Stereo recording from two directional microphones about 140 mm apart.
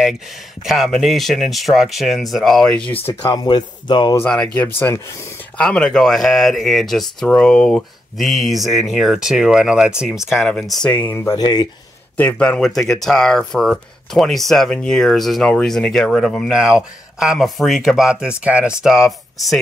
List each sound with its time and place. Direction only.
0.7 s speech: centre (ahead or behind)
3.2 s speech: 30° left (ahead or behind)
4.6 s speech: 15° left (ahead or behind)
11.2 s speech: 30° left (ahead or behind)
12.2 s speech: 10° left (ahead or behind)